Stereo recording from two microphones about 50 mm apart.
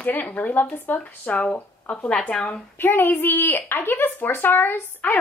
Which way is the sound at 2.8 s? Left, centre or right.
Left.